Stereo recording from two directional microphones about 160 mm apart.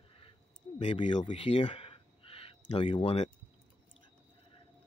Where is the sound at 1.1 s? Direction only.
30° left (ahead or behind).